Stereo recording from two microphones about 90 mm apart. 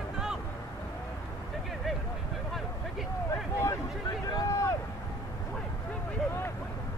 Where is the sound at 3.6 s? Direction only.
40° left (ahead or behind).